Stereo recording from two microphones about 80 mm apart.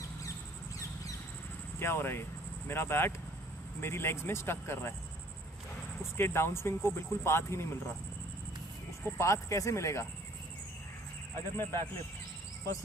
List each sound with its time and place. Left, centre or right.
1.8 s speech: left
6.1 s speech: left
9.2 s speech: left
11.5 s speech: left